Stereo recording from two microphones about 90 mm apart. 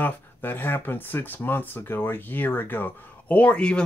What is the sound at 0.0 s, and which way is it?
Speech, 20° left (ahead or behind).